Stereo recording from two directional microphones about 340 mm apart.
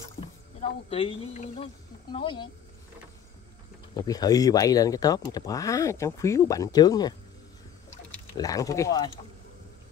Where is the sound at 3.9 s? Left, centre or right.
Centre.